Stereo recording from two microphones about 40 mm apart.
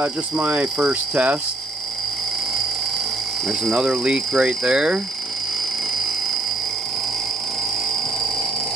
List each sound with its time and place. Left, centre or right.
0.4 s speech: right
3.7 s speech: centre